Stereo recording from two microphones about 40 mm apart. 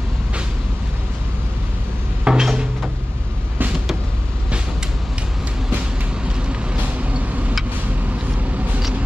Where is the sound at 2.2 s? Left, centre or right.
Centre.